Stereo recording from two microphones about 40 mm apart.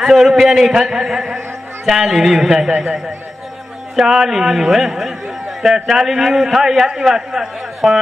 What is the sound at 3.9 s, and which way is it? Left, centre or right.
A man's voice, centre.